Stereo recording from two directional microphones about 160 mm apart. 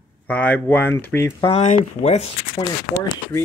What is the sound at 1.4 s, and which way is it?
Speech, 35° left (ahead or behind).